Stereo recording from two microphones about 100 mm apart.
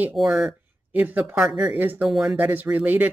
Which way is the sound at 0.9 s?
15° right (ahead or behind).